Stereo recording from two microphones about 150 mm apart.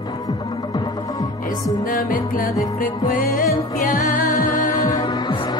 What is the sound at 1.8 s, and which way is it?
Music, 65° left (ahead or behind).